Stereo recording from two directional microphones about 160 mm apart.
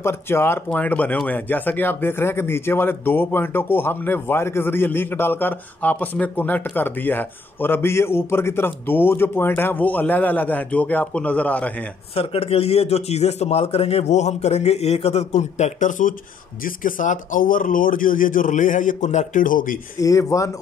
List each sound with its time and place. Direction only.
0.0 s speech: 15° left (ahead or behind)
12.2 s a man's voice: 35° left (ahead or behind); by 19.8 s 55° left (ahead or behind)
20.0 s speech: 20° left (ahead or behind)